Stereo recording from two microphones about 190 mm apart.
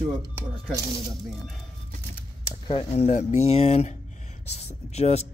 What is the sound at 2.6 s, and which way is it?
Speech, 30° left (ahead or behind).